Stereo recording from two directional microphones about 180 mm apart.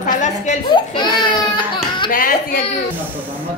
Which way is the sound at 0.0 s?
45° left (ahead or behind).